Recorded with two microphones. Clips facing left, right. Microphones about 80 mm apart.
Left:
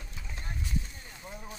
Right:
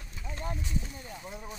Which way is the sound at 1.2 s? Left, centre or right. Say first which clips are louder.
Left 1 dB; centre.